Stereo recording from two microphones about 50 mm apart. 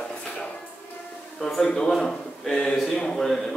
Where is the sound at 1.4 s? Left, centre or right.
Centre.